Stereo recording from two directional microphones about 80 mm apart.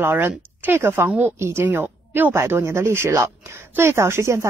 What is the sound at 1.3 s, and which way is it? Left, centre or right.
Speech, right.